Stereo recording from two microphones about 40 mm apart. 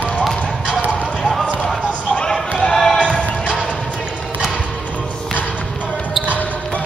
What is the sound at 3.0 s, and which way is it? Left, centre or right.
Music, left.